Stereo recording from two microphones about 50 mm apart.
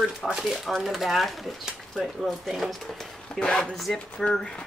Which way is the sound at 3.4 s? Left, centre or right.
Centre.